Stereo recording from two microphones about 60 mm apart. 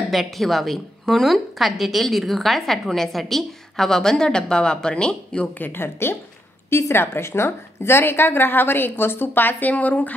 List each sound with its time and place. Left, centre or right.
0.1 s a woman's voice: centre
5.5 s a woman's voice: left